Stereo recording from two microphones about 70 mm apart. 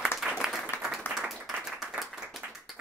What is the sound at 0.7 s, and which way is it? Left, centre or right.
Applause, left.